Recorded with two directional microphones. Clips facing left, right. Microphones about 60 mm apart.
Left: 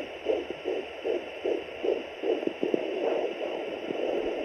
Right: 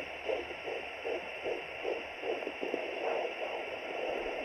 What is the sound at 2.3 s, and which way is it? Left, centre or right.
Heart murmur, right.